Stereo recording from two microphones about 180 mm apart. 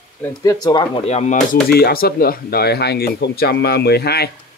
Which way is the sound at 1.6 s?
60° left (ahead or behind).